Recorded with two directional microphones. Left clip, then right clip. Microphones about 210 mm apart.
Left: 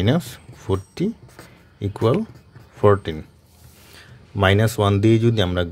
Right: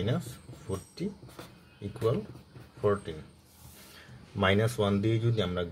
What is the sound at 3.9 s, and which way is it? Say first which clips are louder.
Speech: left 8 dB; 40° left (ahead or behind).